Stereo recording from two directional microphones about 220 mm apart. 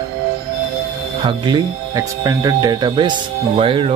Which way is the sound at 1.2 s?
20° right (ahead or behind).